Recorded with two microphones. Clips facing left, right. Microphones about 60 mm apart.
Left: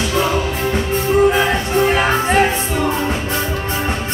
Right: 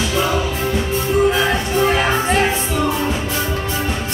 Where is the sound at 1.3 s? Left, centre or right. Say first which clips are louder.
Left 2 dB; centre.